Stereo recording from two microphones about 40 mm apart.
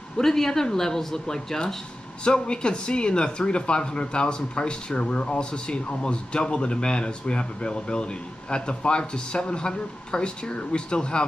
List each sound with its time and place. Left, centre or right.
0.2 s speech: centre